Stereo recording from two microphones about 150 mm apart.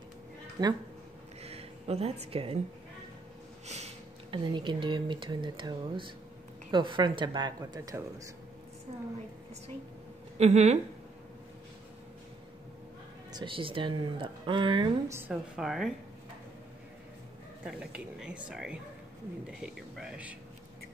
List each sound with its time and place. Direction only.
0.6 s speech: 25° right (ahead or behind)
1.4 s a sound: 45° right (ahead or behind)
3.6 s a sound: 45° right (ahead or behind)
4.3 s speech: 30° right (ahead or behind)
10.4 s speech: 50° right (ahead or behind)
13.3 s speech: 35° right (ahead or behind)
15.0 s speech: 15° right (ahead or behind)
15.5 s speech: centre (ahead or behind)
17.6 s speech: 5° right (ahead or behind)